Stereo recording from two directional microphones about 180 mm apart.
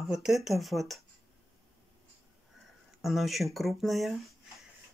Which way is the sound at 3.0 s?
Centre (ahead or behind).